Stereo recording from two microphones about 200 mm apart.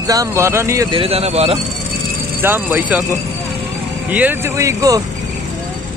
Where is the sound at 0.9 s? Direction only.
30° right (ahead or behind).